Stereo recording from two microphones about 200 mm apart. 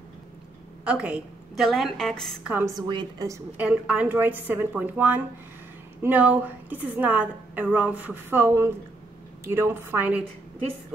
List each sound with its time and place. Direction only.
0.8 s a woman's voice: 5° right (ahead or behind)
2.9 s a woman's voice: 20° right (ahead or behind)
3.5 s a woman's voice: 5° right (ahead or behind)